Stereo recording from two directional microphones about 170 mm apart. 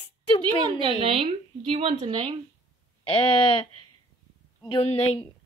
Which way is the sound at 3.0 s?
35° left (ahead or behind).